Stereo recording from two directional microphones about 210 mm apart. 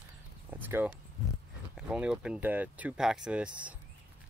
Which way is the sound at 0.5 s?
10° right (ahead or behind).